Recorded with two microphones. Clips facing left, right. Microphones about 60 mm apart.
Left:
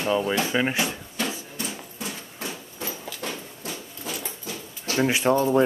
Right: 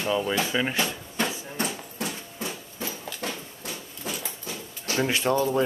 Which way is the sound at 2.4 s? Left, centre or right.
Left.